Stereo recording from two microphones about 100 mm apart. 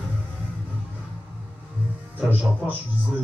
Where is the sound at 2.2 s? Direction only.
15° right (ahead or behind).